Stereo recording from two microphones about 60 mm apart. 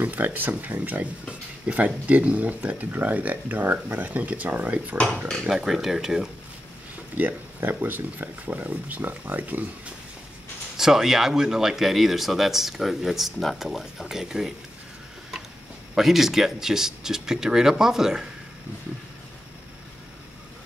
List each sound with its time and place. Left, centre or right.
0.0 s speech: right
5.4 s speech: centre
7.2 s speech: right
10.8 s speech: centre
15.9 s speech: centre